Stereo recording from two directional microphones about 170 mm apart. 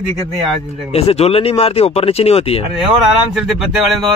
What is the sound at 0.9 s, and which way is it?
A man's voice, 35° left (ahead or behind).